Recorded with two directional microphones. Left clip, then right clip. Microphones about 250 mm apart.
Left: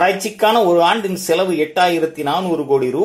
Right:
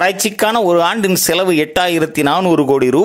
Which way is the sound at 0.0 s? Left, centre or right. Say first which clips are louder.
Right 1 dB; right.